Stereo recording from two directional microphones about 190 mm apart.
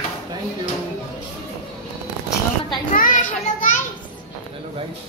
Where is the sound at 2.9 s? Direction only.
45° left (ahead or behind).